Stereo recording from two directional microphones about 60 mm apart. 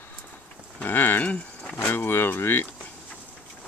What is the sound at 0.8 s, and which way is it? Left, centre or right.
Livestock, left.